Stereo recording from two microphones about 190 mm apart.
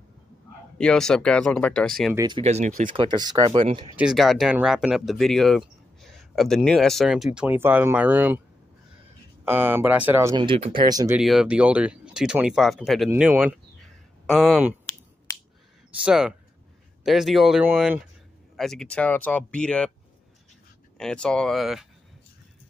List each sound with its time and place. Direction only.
0.7 s speech: 5° left (ahead or behind)
2.1 s speech: 25° right (ahead or behind)
2.4 s speech: 35° right (ahead or behind)
2.9 s speech: 25° right (ahead or behind)
3.9 s speech: 5° right (ahead or behind)
7.3 s speech: 10° right (ahead or behind)
9.4 s speech: 10° right (ahead or behind)
10.3 s speech: 25° right (ahead or behind)
11.1 s speech: 5° right (ahead or behind)
15.3 s a sound: 15° left (ahead or behind)
16.0 s speech: 5° right (ahead or behind)
21.0 s speech: 5° left (ahead or behind)